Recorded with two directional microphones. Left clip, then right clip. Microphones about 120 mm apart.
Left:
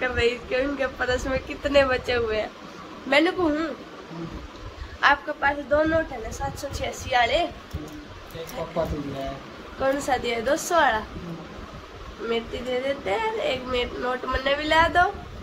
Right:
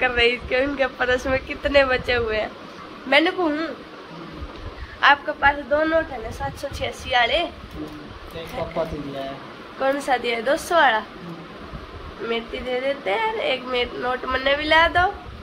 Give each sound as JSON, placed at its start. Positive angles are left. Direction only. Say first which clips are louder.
{"t": 0.0, "sound": "speech", "louder": "right 5 dB", "side_deg": -20}
{"t": 1.5, "sound": "speech", "louder": "right 2 dB", "side_deg": 10}
{"t": 5.0, "sound": "speech", "louder": "right 4 dB", "side_deg": 15}
{"t": 6.8, "sound": "speech", "louder": "right 2 dB", "side_deg": -5}
{"t": 9.8, "sound": "speech", "louder": "right 3 dB", "side_deg": 5}
{"t": 12.3, "sound": "speech", "louder": "right 1 dB", "side_deg": 0}